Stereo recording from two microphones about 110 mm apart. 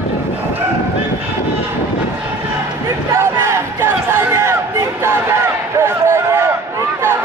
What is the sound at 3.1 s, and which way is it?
Crowd, 25° right (ahead or behind).